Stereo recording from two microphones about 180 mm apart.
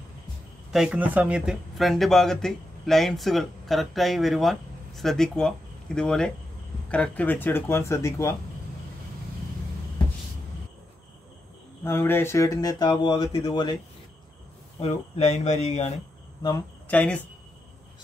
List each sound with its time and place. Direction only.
0.7 s speech: 5° right (ahead or behind); by 8.4 s 15° left (ahead or behind)
11.8 s speech: 15° left (ahead or behind)
14.8 s speech: 35° left (ahead or behind)
16.8 s speech: 10° left (ahead or behind)